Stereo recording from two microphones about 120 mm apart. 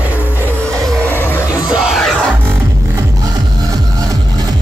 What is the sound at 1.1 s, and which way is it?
Music, 15° left (ahead or behind).